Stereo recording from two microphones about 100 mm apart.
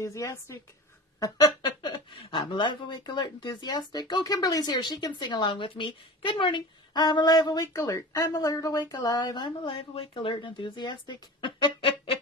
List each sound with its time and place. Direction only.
0.0 s speech: 30° left (ahead or behind)
1.6 s a sound: 50° left (ahead or behind)
2.4 s a woman's voice: 50° left (ahead or behind)
7.7 s speech: 30° left (ahead or behind); by 9.5 s 45° left (ahead or behind)
9.7 s speech: 70° left (ahead or behind); by 11.9 s 50° left (ahead or behind)